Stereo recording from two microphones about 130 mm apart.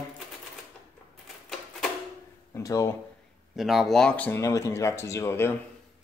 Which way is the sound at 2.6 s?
25° left (ahead or behind).